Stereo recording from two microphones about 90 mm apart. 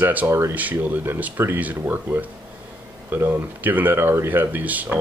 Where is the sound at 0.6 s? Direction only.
20° right (ahead or behind).